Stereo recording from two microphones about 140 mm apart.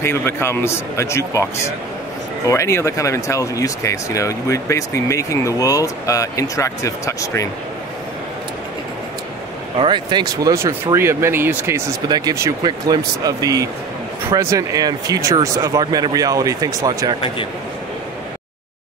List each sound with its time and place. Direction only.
0.0 s a man's voice: 15° left (ahead or behind)
9.8 s speech: 35° right (ahead or behind)